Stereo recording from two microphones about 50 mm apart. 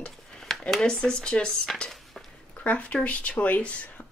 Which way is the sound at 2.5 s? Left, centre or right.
Left.